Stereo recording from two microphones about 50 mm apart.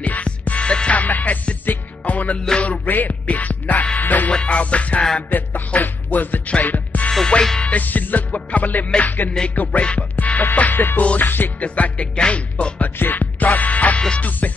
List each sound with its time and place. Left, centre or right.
0.0 s music: left
2.3 s music: centre
2.6 s music: left
4.3 s music: left
5.3 s music: left
7.1 s music: centre
7.6 s music: left
11.6 s music: left
13.0 s music: left